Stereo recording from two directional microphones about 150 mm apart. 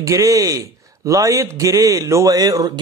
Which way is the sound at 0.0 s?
20° right (ahead or behind).